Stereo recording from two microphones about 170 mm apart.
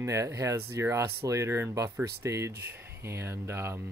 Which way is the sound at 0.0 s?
15° right (ahead or behind).